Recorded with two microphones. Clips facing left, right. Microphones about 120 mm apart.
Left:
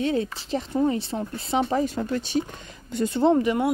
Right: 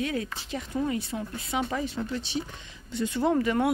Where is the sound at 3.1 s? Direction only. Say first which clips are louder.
Left 4 dB; 25° left (ahead or behind).